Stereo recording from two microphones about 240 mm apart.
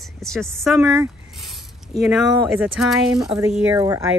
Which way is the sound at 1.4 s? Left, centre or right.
Centre.